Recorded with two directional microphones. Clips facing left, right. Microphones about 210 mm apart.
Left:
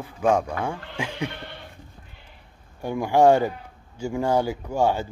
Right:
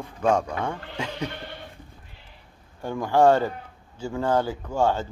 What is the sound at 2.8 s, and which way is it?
Speech, 10° left (ahead or behind).